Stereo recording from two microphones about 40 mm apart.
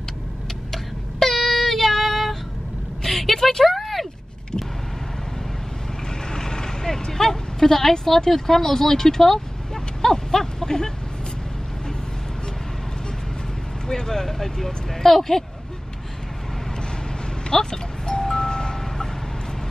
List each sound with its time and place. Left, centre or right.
1.2 s child singing: centre
3.0 s a sound: centre
6.3 s vehicle: centre
10.0 s a sound: centre
13.8 s speech: centre
17.5 s music: centre